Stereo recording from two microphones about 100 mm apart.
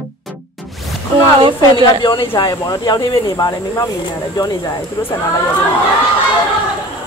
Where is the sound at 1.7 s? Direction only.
55° left (ahead or behind).